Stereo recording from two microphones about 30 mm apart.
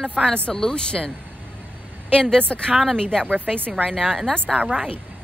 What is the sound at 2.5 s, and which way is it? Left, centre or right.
Speech, left.